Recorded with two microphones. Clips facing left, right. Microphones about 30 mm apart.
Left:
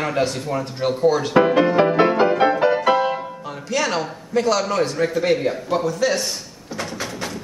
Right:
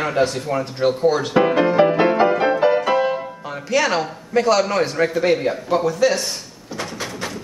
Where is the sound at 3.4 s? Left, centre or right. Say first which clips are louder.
Right 4 dB; centre.